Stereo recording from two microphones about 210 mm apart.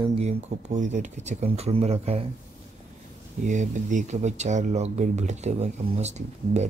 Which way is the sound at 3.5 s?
35° right (ahead or behind).